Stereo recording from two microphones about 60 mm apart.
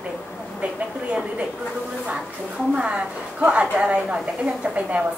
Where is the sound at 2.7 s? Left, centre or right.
Right.